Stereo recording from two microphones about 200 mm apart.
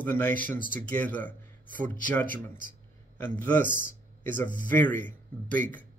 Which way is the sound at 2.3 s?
40° right (ahead or behind).